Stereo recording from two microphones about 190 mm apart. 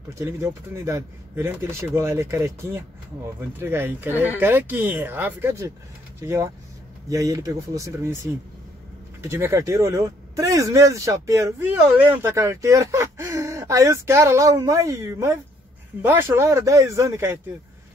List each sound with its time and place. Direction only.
0.2 s speech: 15° right (ahead or behind)